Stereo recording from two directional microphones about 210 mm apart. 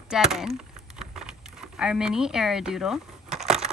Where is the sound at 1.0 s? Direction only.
5° right (ahead or behind).